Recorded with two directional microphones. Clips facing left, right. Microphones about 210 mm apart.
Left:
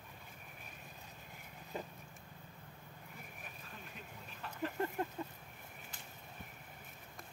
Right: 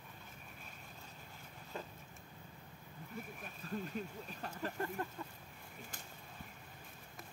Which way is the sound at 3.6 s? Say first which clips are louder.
Right 16 dB; 40° right (ahead or behind).